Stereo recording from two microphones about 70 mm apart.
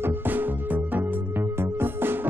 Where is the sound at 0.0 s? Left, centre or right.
Right.